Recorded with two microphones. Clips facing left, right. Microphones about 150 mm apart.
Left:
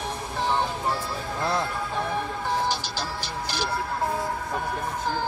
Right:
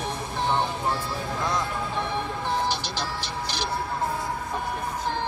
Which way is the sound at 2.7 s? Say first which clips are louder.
Even; 35° left (ahead or behind).